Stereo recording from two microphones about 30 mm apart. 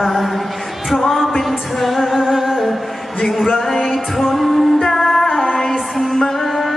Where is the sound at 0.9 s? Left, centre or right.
Centre.